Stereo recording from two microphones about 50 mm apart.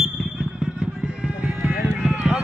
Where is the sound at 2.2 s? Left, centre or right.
Centre.